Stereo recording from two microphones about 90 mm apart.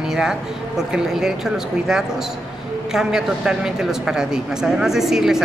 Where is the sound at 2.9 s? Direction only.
5° right (ahead or behind).